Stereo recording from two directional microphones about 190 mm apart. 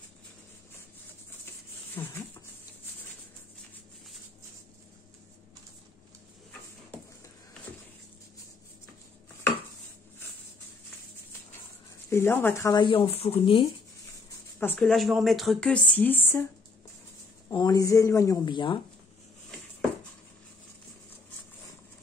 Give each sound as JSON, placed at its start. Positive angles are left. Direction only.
{"t": 2.0, "sound": "speech", "side_deg": 15}
{"t": 12.1, "sound": "speech", "side_deg": 10}
{"t": 12.8, "sound": "speech", "side_deg": 30}
{"t": 14.6, "sound": "speech", "side_deg": 5}
{"t": 17.5, "sound": "speech", "side_deg": 20}